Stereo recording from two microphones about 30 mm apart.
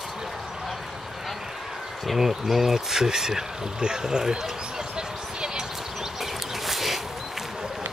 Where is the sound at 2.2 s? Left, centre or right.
Centre.